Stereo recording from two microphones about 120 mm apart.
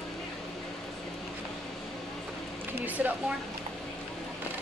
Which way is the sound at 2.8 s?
15° right (ahead or behind).